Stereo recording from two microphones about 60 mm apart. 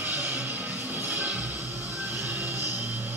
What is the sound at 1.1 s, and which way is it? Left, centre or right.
Music, right.